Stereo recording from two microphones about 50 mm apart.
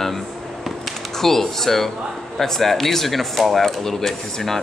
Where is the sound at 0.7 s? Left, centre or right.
Centre.